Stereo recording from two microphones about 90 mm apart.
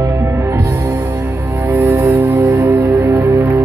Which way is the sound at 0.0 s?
35° right (ahead or behind).